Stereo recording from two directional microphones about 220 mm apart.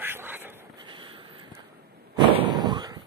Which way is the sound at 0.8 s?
20° right (ahead or behind).